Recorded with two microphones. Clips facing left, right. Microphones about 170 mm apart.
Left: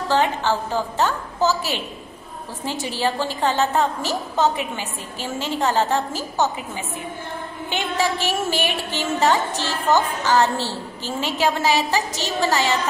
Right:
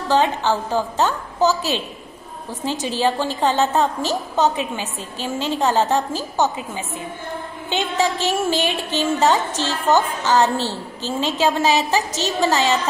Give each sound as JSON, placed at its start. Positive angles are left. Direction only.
{"t": 0.1, "sound": "a woman's voice", "side_deg": -20}
{"t": 7.7, "sound": "a woman's voice", "side_deg": -20}